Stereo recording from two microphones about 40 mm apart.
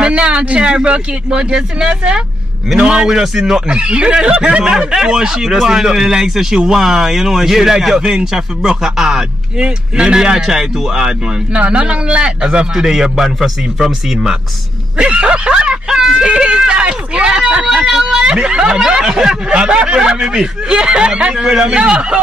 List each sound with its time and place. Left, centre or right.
0.0 s speech: right; by 3.6 s centre
3.6 s speech: right
9.6 s speech: right
15.0 s speech: right
17.6 s speech: centre